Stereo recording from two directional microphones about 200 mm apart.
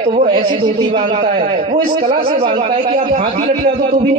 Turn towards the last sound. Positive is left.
turn(degrees=-35)  # may be behind; listen again after turning